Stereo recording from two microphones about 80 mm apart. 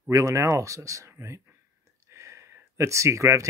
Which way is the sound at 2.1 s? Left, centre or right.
Right.